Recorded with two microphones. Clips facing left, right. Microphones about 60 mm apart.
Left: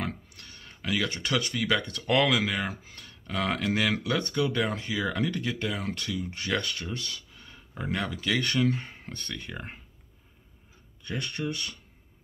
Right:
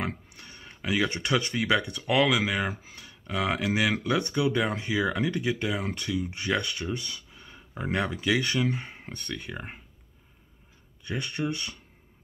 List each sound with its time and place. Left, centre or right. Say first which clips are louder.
0.4 s speech: right 2 dB; centre
1.7 s speech: right 1 dB; centre
8.3 s speech: left 1 dB; centre
11.1 s speech: right 2 dB; centre